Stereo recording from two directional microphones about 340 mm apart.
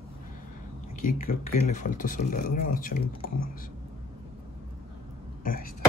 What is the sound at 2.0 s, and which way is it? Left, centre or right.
Speech, left.